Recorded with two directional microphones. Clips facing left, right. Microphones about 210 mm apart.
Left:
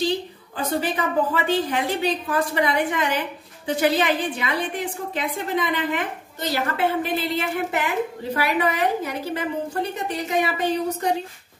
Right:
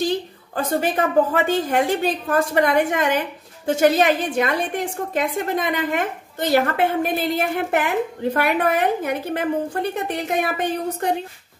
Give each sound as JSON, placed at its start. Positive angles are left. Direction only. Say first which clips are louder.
{"t": 0.6, "sound": "a woman's voice", "louder": "right 3 dB", "side_deg": -45}